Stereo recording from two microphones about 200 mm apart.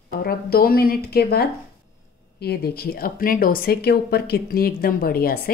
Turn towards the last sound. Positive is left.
turn(degrees=50)  # may be behind; listen again after turning